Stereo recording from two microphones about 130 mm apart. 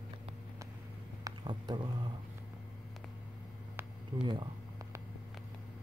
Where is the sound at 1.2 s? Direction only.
35° right (ahead or behind).